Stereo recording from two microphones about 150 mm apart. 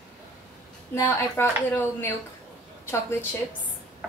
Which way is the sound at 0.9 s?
15° left (ahead or behind).